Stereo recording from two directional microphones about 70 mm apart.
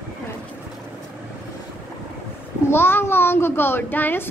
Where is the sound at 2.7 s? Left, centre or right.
Left.